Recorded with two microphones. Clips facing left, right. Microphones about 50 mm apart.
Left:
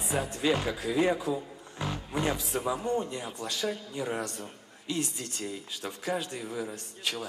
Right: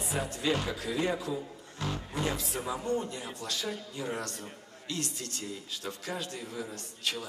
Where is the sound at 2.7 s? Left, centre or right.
Centre.